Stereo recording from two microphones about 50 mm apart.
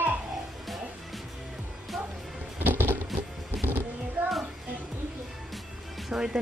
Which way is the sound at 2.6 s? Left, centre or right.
Right.